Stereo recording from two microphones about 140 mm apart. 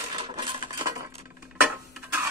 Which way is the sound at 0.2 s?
35° right (ahead or behind).